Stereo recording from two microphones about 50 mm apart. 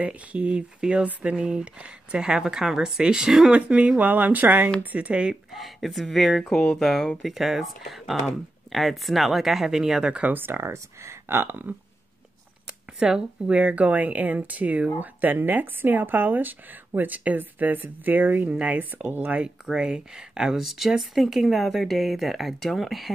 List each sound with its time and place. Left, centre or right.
0.0 s speech: right
3.5 s speech: right
4.9 s speech: right
5.3 s speech: centre
10.3 s speech: right
10.6 s speech: right
13.0 s speech: centre
19.6 s speech: centre